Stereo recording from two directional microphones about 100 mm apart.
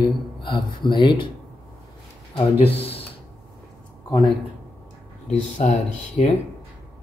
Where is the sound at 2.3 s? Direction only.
75° left (ahead or behind).